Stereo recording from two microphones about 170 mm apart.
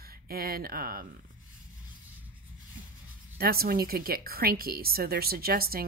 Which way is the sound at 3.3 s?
65° right (ahead or behind).